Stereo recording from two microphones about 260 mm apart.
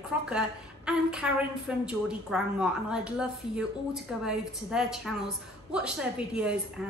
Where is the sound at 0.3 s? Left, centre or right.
Centre.